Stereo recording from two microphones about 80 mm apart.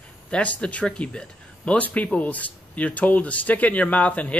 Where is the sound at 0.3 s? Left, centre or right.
Centre.